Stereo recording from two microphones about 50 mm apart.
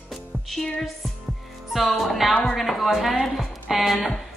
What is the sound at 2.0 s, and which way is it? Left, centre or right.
A woman's voice, centre.